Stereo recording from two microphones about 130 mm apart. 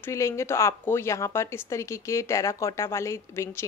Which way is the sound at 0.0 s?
20° left (ahead or behind).